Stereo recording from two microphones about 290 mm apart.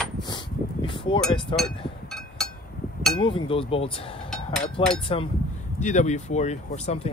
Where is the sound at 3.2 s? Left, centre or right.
Centre.